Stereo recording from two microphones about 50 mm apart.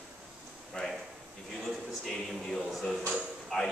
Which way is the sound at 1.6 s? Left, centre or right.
Centre.